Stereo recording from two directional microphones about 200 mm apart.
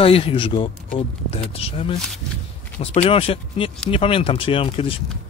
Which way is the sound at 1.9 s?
5° left (ahead or behind).